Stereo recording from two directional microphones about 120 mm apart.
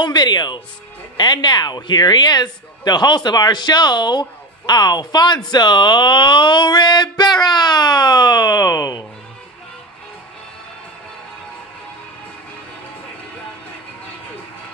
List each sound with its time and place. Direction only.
0.0 s speech: 35° left (ahead or behind)